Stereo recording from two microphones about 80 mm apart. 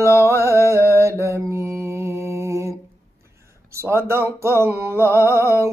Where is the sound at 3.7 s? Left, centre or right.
Right.